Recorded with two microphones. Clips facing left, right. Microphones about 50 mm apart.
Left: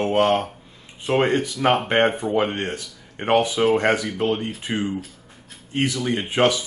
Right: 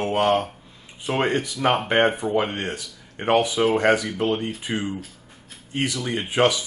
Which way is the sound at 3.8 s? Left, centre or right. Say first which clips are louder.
Right 1 dB; centre.